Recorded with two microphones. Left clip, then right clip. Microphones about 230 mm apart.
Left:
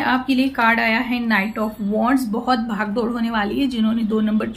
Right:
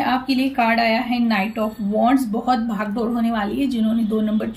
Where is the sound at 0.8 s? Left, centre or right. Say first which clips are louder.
Even; left.